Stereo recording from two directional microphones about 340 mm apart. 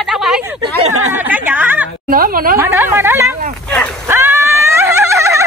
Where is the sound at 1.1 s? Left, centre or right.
Centre.